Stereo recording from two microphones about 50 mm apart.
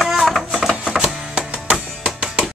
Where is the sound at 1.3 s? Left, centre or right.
Centre.